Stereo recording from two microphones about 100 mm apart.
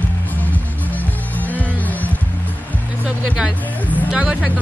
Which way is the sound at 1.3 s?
15° left (ahead or behind).